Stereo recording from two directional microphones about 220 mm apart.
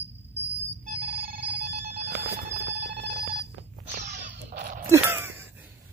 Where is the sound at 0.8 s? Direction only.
45° right (ahead or behind).